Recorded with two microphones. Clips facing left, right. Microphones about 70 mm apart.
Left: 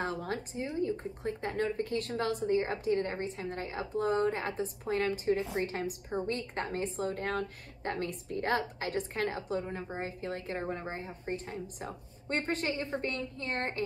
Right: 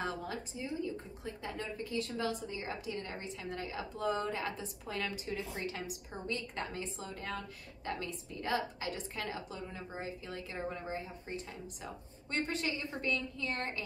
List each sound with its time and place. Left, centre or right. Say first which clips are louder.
0.2 s a woman's voice: left 5 dB; left